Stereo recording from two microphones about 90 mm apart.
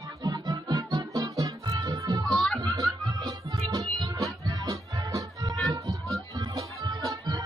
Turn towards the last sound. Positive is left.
turn(degrees=-50)  # may be behind; listen again after turning